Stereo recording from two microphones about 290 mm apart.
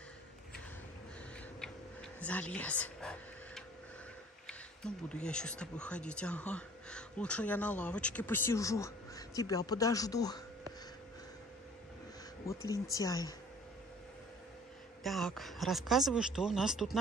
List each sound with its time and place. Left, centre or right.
1.6 s a sound: centre
4.5 s speech: centre
12.4 s speech: centre
15.0 s speech: centre